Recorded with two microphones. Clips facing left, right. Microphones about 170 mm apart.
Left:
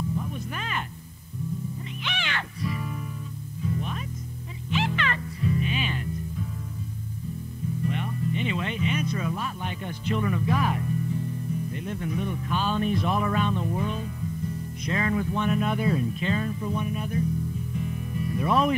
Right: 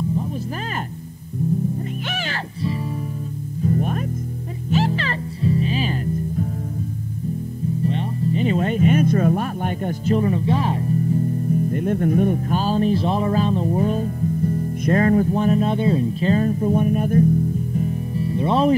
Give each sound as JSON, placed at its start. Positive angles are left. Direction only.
{"t": 2.0, "sound": "music", "side_deg": -40}
{"t": 3.6, "sound": "music", "side_deg": -50}
{"t": 7.8, "sound": "music", "side_deg": -30}
{"t": 17.7, "sound": "music", "side_deg": -35}